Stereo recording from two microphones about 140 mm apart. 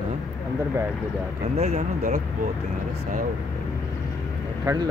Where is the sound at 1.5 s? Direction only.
50° right (ahead or behind).